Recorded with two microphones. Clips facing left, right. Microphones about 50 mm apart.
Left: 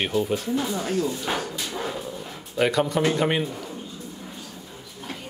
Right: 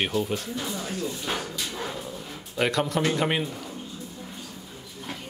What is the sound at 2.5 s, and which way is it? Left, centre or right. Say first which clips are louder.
Speech: left 3 dB; centre.